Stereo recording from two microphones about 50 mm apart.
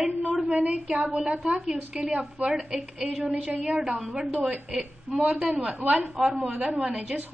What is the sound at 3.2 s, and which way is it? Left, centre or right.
Speech, right.